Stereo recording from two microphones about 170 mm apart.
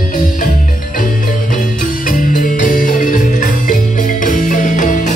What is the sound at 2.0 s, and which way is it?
Music, 55° left (ahead or behind).